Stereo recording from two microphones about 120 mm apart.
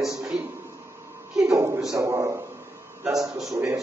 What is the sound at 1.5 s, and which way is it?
Speech, 25° right (ahead or behind).